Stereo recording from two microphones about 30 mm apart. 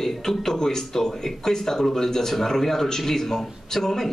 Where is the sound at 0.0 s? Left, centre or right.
Centre.